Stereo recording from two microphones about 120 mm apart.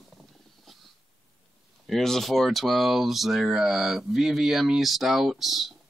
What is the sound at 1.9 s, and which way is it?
Speech, centre (ahead or behind).